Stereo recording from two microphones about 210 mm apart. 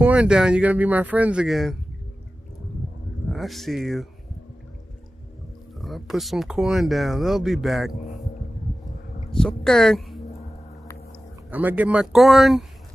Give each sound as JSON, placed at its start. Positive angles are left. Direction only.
{"t": 0.0, "sound": "speech", "side_deg": -5}
{"t": 3.3, "sound": "speech", "side_deg": 0}
{"t": 5.8, "sound": "speech", "side_deg": 0}
{"t": 7.9, "sound": "speech", "side_deg": 35}
{"t": 9.3, "sound": "speech", "side_deg": 5}
{"t": 11.5, "sound": "speech", "side_deg": -10}